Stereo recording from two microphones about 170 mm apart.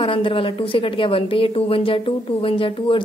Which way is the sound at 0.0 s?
30° left (ahead or behind).